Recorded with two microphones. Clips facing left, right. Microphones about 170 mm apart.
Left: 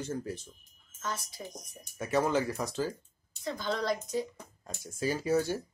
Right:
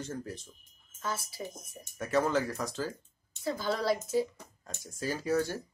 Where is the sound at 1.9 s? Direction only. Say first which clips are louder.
Even; 15° left (ahead or behind).